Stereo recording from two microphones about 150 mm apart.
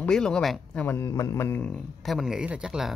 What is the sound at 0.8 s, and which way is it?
Speech, 20° left (ahead or behind).